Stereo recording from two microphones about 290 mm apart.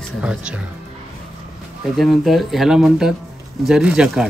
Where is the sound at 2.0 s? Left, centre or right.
Centre.